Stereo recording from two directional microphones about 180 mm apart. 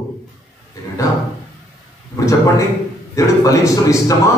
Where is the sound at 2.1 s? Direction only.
15° left (ahead or behind).